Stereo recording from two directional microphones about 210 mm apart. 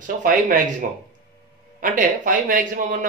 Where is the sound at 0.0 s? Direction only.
40° right (ahead or behind).